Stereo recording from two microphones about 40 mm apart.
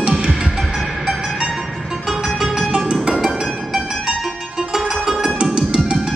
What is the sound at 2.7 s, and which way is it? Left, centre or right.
Music, centre.